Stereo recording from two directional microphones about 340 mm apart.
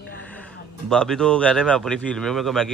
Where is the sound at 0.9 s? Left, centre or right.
Centre.